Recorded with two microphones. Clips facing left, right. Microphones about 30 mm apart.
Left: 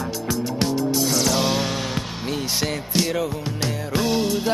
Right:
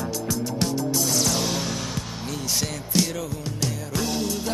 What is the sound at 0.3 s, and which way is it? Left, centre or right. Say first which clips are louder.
Music: left 4 dB; left.